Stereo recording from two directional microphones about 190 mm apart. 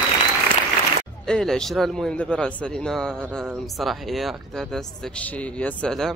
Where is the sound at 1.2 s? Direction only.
5° left (ahead or behind).